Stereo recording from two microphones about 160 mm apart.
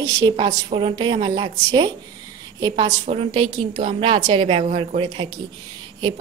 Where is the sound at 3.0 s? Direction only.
30° right (ahead or behind).